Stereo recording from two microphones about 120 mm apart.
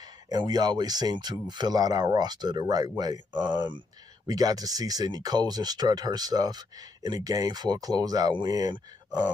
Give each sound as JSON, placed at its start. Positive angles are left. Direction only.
{"t": 0.3, "sound": "speech", "side_deg": -35}